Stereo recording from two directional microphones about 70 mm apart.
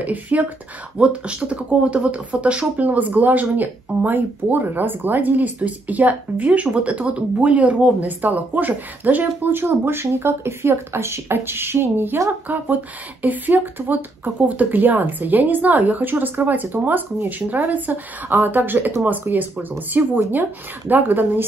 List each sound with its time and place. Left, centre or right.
0.0 s speech: right